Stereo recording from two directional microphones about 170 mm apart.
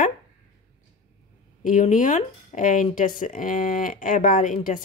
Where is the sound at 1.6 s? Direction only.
50° left (ahead or behind).